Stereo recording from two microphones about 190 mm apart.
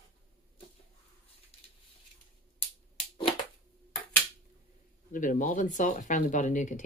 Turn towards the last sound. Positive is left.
turn(degrees=40)  # may be behind; listen again after turning